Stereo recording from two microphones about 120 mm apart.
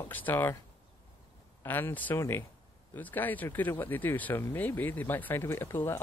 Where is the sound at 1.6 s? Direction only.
20° left (ahead or behind).